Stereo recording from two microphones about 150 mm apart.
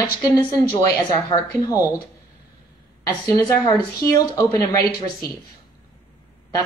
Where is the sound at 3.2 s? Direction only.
25° left (ahead or behind).